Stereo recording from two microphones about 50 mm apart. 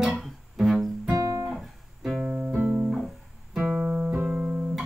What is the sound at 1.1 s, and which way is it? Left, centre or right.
Guitar, right.